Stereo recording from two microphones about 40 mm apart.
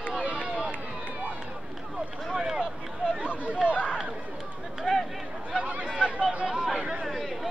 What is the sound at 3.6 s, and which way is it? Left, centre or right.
Run, left.